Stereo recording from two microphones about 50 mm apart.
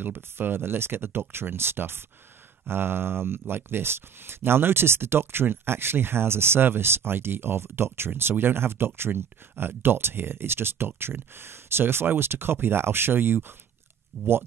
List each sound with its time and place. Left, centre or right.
0.0 s speech: right